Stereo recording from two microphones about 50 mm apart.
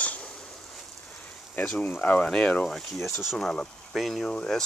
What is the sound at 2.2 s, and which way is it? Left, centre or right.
Speech, centre.